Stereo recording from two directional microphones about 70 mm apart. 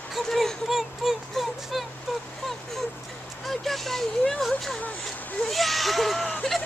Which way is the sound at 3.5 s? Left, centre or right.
Centre.